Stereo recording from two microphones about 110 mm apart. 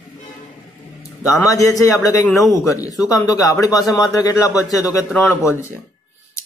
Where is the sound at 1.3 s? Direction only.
30° left (ahead or behind).